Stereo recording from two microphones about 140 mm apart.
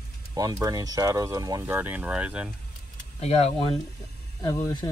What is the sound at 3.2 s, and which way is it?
Speech, 50° left (ahead or behind).